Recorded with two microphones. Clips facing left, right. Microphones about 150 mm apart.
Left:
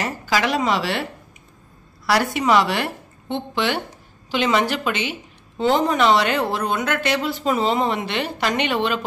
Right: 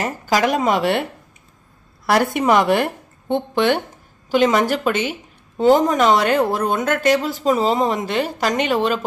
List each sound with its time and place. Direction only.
0.3 s speech: 45° right (ahead or behind)
2.0 s a woman's voice: 50° right (ahead or behind)